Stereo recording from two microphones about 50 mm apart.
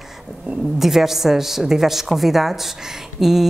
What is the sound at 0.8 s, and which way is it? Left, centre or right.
A woman's voice, centre.